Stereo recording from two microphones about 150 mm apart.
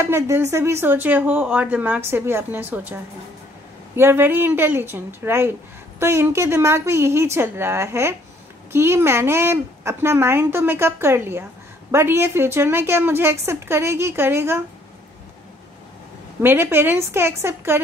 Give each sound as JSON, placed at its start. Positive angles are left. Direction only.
{"t": 0.0, "sound": "speech", "side_deg": -15}
{"t": 16.3, "sound": "speech", "side_deg": -15}